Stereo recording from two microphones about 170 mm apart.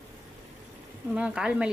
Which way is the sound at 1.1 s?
5° right (ahead or behind).